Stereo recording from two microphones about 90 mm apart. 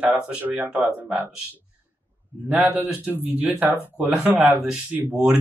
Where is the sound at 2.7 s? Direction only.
15° right (ahead or behind).